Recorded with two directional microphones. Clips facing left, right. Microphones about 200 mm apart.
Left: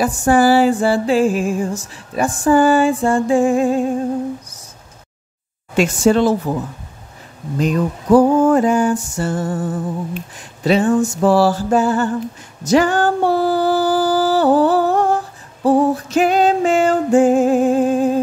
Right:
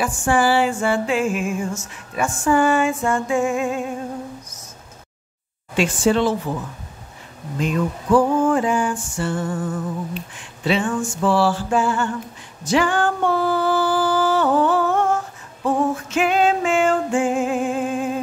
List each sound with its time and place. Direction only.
0.0 s music: 40° left (ahead or behind)
5.8 s speech: 45° left (ahead or behind)
7.5 s music: 40° left (ahead or behind)
12.6 s a sound: 40° left (ahead or behind)